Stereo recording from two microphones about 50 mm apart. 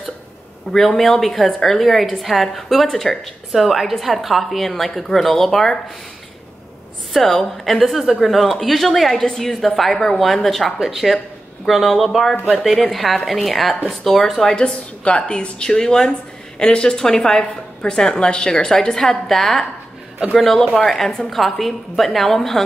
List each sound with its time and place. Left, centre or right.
0.7 s a woman's voice: centre
3.5 s a woman's voice: centre
7.2 s a woman's voice: centre
14.5 s a woman's voice: centre